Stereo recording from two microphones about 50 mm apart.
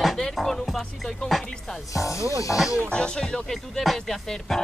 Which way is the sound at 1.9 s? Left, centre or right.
Left.